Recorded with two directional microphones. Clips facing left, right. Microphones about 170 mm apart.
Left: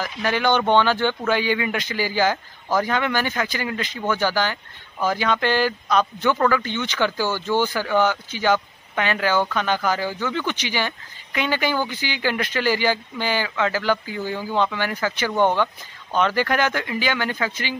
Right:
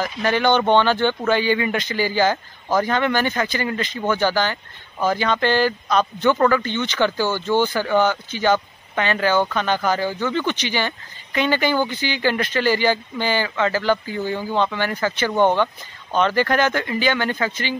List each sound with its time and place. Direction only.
0.0 s speech: 10° left (ahead or behind)
7.2 s speech: 20° right (ahead or behind)
8.0 s speech: 10° left (ahead or behind)